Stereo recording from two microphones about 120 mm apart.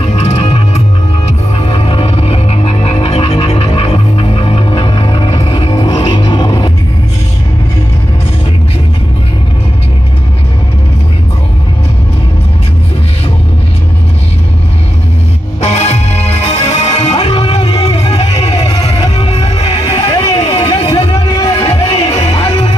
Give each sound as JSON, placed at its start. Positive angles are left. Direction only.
{"t": 0.0, "sound": "music", "side_deg": 65}
{"t": 15.6, "sound": "music", "side_deg": 60}
{"t": 17.2, "sound": "music", "side_deg": 40}
{"t": 17.8, "sound": "music", "side_deg": 55}